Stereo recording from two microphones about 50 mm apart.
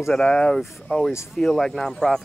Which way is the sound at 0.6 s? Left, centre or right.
Centre.